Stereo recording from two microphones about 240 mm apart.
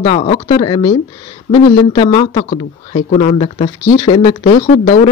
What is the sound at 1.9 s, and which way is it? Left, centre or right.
Speech, left.